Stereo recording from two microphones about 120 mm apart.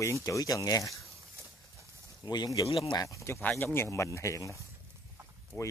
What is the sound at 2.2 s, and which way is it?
Speech, 35° left (ahead or behind).